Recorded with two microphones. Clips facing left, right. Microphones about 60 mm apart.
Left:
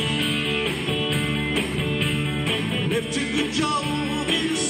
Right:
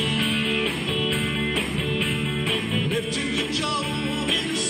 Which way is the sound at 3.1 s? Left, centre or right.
Centre.